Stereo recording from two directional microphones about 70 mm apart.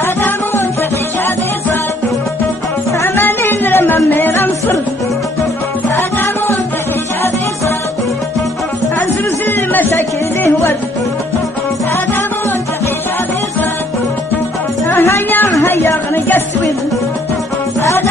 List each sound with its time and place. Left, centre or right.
0.0 s music: left
3.0 s music: left
9.8 s music: left
15.6 s a sound: left